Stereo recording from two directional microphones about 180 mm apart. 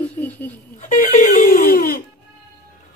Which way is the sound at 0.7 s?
45° left (ahead or behind).